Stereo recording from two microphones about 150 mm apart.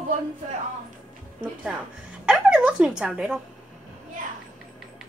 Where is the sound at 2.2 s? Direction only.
5° right (ahead or behind).